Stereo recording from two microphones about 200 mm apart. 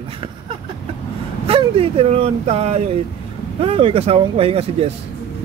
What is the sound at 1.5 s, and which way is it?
Speech, 30° right (ahead or behind).